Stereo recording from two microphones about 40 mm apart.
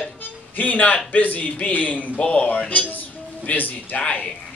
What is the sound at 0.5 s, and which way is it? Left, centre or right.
A man's voice, left.